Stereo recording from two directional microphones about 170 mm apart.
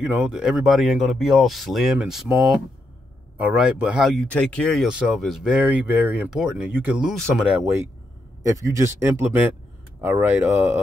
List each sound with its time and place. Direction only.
0.0 s speech: 5° right (ahead or behind)
8.4 s speech: 20° right (ahead or behind)